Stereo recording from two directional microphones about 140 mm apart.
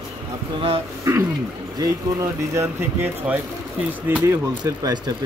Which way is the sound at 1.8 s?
25° right (ahead or behind).